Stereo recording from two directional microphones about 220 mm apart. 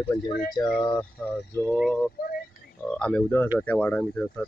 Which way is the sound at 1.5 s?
10° left (ahead or behind).